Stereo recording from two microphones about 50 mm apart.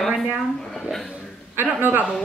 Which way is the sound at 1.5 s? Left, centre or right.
Right.